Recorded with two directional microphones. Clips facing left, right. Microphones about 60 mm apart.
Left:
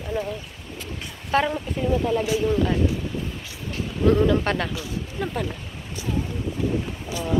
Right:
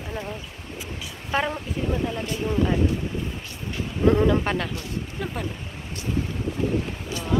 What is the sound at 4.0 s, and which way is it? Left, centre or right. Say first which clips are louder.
Speech: even; right.